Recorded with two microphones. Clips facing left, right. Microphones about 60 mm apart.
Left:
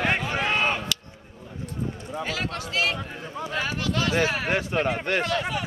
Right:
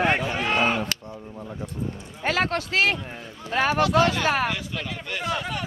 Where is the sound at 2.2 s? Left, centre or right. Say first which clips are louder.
Right 7 dB; right.